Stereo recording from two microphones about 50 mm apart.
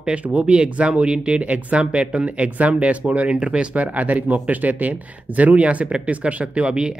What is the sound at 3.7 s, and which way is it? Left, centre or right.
Speech, right.